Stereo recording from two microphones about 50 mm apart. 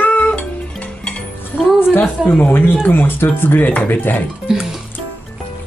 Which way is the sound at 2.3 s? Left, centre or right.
Left.